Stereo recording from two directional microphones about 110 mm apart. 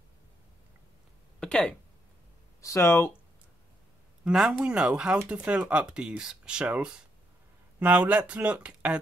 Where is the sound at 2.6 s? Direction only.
25° left (ahead or behind).